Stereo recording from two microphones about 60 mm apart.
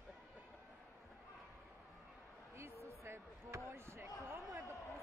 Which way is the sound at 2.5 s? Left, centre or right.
Right.